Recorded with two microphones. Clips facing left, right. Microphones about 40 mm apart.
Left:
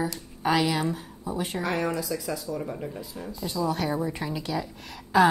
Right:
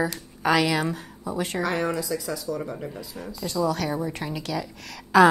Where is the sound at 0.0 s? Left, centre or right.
Right.